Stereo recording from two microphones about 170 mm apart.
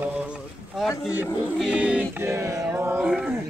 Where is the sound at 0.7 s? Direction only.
Centre (ahead or behind).